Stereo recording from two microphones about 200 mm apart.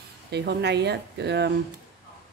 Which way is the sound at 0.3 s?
55° right (ahead or behind).